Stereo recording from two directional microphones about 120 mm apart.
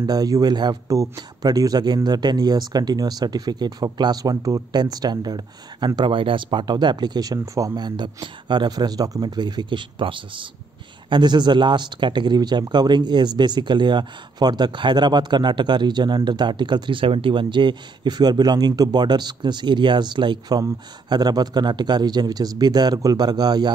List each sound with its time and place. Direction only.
0.0 s speech: 30° right (ahead or behind)